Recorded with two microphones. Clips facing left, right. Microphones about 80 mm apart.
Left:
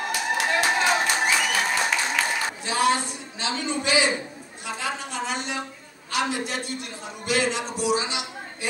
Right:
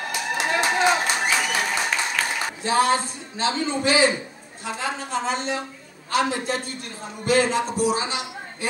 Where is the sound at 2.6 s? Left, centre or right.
Right.